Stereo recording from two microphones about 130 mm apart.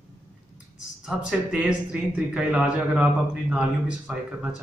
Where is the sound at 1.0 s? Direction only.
10° right (ahead or behind).